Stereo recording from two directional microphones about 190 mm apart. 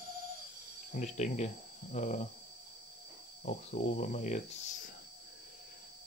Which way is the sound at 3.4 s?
40° left (ahead or behind).